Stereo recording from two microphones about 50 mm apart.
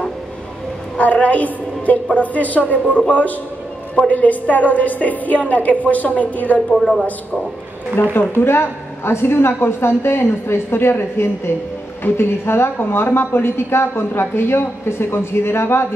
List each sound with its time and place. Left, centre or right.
0.9 s a woman's voice: left
8.0 s a woman's voice: left